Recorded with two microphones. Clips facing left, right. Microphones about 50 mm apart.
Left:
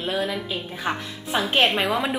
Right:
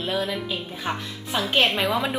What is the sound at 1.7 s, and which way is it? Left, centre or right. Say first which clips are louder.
Speech: left 1 dB; centre.